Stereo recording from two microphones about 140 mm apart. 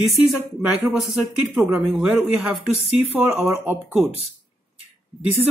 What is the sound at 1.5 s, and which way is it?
Speech, 20° right (ahead or behind).